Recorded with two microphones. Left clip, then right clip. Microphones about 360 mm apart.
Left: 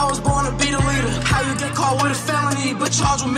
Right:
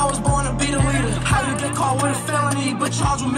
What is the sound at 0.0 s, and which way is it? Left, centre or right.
Music, centre.